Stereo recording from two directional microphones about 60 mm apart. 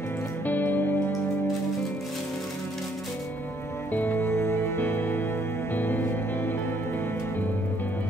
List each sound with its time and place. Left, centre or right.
0.5 s music: left
3.9 s music: left